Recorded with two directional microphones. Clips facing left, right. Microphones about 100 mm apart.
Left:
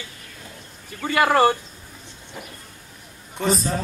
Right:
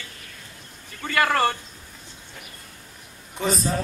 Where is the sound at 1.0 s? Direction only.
15° left (ahead or behind).